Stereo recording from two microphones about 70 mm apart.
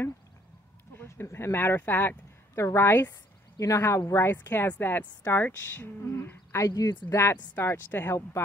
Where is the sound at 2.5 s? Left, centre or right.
Left.